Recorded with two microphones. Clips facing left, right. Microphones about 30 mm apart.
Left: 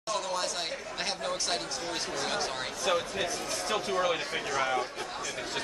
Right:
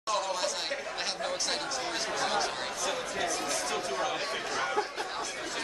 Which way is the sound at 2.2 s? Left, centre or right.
Centre.